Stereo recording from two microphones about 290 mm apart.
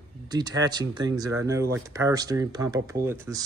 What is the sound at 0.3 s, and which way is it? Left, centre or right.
Speech, centre.